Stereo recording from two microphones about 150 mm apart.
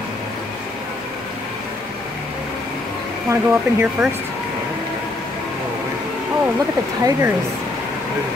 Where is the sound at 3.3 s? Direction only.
10° right (ahead or behind).